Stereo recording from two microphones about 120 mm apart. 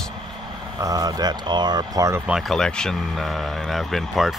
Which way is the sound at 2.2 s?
Centre (ahead or behind).